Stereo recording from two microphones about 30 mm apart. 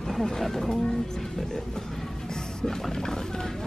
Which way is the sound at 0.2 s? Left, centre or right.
Centre.